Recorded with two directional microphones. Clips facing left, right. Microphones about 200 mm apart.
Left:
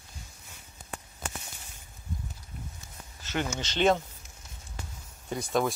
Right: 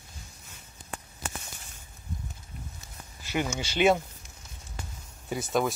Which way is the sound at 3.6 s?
10° right (ahead or behind).